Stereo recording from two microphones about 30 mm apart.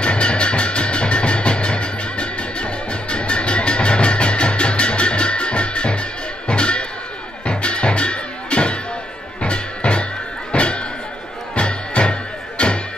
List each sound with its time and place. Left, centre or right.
0.0 s music: left